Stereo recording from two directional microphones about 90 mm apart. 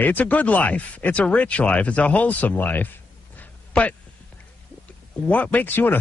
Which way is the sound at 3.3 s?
15° left (ahead or behind).